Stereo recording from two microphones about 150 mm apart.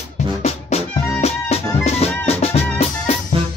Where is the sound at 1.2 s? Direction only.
45° left (ahead or behind).